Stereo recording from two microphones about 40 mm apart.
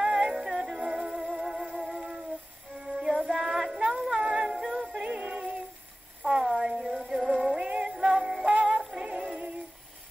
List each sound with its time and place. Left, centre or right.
0.0 s music: centre
2.8 s child singing: right
4.1 s music: right
6.5 s a sound: centre
7.3 s music: right
8.9 s synthetic singing: centre